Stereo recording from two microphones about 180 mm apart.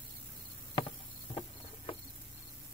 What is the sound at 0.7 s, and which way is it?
Cricket, 30° left (ahead or behind).